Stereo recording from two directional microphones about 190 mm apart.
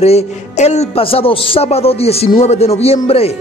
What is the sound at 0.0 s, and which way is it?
A woman's voice, 35° left (ahead or behind).